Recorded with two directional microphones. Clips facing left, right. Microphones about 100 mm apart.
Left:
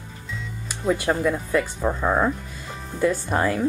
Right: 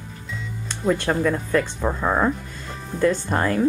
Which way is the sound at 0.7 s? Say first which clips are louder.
Right 1 dB; 5° left (ahead or behind).